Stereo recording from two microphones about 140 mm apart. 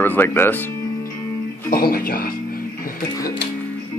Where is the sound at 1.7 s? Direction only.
90° left.